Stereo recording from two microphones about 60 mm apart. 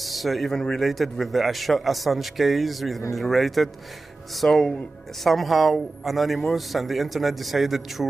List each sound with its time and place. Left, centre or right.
0.0 s a man's voice: centre